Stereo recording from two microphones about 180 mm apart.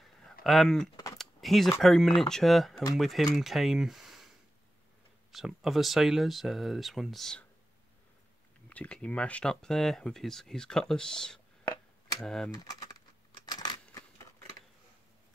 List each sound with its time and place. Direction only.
0.0 s a sound: centre (ahead or behind)
1.8 s speech: centre (ahead or behind)
5.3 s speech: centre (ahead or behind)
8.6 s speech: 5° left (ahead or behind)
12.5 s speech: 20° left (ahead or behind)
13.5 s coin: 25° left (ahead or behind)